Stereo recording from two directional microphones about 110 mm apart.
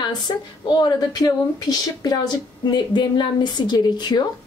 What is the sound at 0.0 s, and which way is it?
A woman's voice, 40° left (ahead or behind).